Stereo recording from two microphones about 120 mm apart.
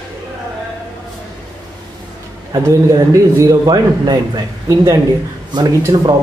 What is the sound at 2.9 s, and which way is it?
A man's voice, 30° right (ahead or behind).